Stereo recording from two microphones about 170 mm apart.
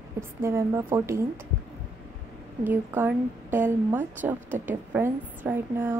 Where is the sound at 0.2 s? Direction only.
15° right (ahead or behind).